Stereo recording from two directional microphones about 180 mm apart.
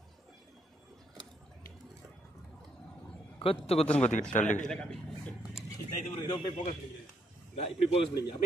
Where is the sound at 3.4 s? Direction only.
30° left (ahead or behind).